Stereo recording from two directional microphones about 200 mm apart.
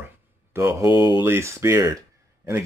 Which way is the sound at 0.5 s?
15° right (ahead or behind).